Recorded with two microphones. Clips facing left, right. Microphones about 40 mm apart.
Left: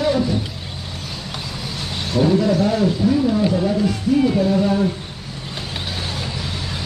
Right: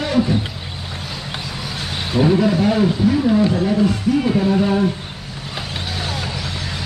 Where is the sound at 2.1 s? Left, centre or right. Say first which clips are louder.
Right 1 dB; right.